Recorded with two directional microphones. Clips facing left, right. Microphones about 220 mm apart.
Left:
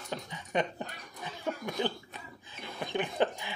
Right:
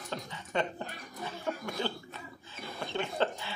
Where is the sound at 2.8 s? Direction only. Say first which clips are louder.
Left 2 dB; 15° left (ahead or behind).